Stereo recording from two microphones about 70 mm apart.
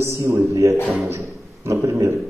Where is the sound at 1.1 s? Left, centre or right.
Right.